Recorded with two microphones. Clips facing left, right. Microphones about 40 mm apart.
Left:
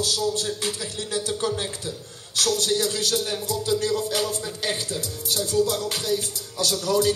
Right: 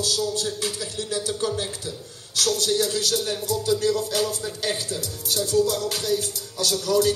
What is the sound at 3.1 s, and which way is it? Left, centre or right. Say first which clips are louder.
Music: even; centre.